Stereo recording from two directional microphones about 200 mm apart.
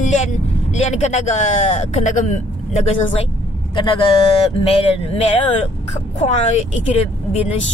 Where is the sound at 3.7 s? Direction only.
25° left (ahead or behind).